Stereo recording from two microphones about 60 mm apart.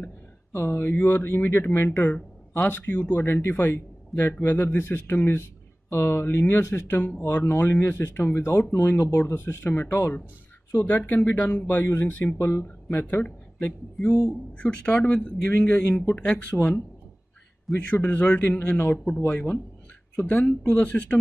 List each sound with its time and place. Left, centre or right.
0.5 s speech: left
7.2 s speech: left
8.7 s speech: left
10.8 s speech: left
12.1 s speech: left
12.4 s speech: left
13.0 s a man's voice: left
14.0 s speech: centre
14.6 s a man's voice: centre
17.7 s speech: centre
18.0 s speech: left